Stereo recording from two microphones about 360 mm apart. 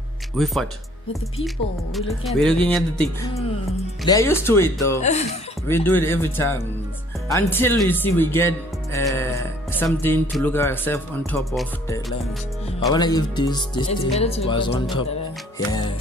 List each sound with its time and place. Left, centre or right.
2.0 s speech: centre
5.0 s speech: centre
5.7 s speech: centre